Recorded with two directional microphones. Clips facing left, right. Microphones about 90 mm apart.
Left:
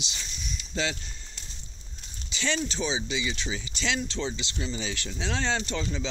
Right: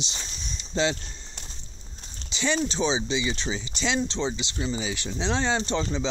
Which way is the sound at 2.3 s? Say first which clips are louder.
Right 4 dB; 20° right (ahead or behind).